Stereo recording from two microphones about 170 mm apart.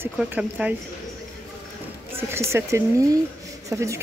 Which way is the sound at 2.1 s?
15° right (ahead or behind).